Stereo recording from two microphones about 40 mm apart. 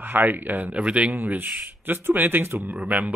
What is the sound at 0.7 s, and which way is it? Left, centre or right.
Speech, right.